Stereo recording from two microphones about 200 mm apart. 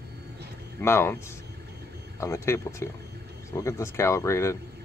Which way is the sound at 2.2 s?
15° left (ahead or behind).